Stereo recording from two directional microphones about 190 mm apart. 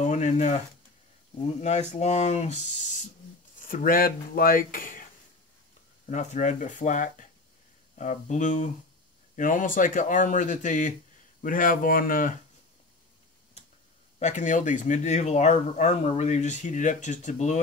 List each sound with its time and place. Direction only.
0.0 s speech: 40° left (ahead or behind)
1.6 s speech: 35° left (ahead or behind)
6.0 s speech: 40° left (ahead or behind)
14.2 s speech: 40° left (ahead or behind)